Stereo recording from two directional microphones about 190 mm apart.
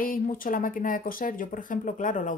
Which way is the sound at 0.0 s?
45° left (ahead or behind).